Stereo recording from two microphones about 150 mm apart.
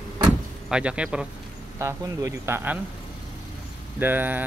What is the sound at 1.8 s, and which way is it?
Speech, 20° right (ahead or behind).